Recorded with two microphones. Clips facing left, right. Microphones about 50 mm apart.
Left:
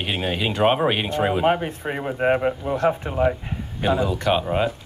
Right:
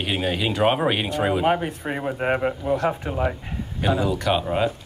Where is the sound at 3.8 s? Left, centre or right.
Left.